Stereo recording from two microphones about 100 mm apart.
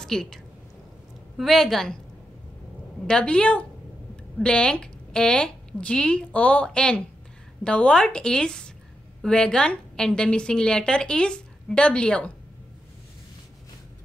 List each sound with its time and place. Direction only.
0.0 s a woman's voice: 5° left (ahead or behind)
3.1 s a woman's voice: 10° left (ahead or behind)